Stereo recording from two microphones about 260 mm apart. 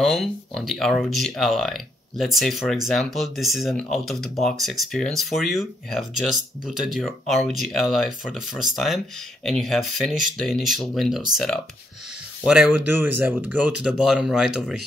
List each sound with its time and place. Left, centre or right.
0.0 s speech: centre